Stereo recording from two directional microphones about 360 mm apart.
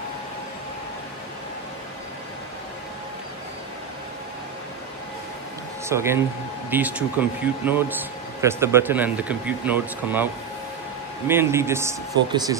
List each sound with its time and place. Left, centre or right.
5.9 s speech: centre
11.2 s speech: centre